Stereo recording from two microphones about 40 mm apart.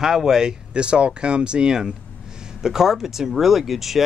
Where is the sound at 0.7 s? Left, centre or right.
Right.